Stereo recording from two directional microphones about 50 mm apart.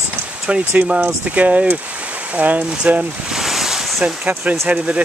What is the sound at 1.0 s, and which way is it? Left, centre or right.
Speech, right.